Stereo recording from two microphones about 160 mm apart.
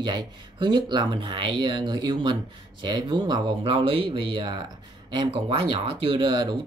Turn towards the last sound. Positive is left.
turn(degrees=-25)  # may be behind; listen again after turning